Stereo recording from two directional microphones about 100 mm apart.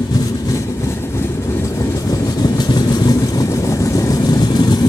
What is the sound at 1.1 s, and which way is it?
Vehicle, 30° left (ahead or behind).